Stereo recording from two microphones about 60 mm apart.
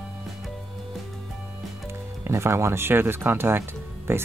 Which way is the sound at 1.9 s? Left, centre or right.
Right.